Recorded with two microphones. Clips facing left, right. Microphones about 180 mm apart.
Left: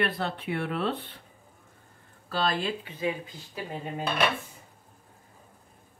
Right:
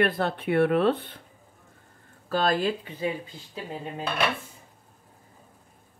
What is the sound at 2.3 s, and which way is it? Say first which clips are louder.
Speech: right 4 dB; 45° right (ahead or behind).